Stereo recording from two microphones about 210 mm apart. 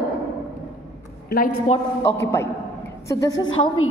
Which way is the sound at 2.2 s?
15° left (ahead or behind).